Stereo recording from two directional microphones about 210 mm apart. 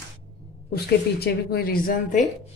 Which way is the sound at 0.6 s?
50° left (ahead or behind).